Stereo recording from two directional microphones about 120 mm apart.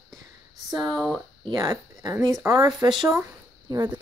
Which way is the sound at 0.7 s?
35° right (ahead or behind).